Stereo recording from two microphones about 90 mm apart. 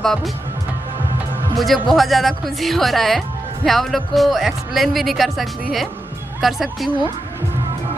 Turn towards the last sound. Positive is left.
turn(degrees=0)  # may be behind; listen again after turning